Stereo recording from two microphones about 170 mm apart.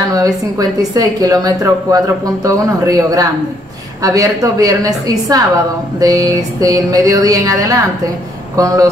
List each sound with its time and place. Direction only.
0.1 s speech: 20° right (ahead or behind)